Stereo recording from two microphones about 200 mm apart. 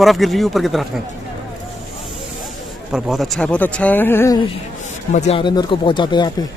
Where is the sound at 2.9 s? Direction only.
Centre (ahead or behind).